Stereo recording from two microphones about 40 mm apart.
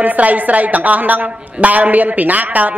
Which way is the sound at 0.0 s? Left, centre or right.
Right.